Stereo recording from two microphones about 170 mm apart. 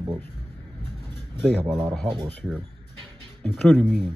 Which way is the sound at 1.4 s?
5° right (ahead or behind).